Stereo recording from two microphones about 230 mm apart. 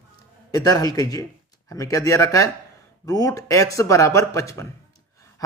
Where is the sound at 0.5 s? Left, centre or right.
Centre.